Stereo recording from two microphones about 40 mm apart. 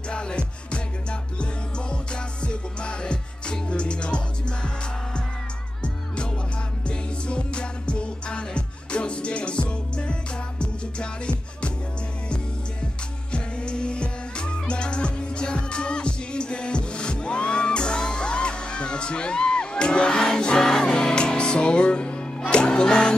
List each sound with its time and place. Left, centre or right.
0.1 s music: left
6.9 s music: left
13.3 s music: left